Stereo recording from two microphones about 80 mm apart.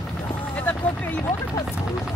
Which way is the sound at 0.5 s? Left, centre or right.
Centre.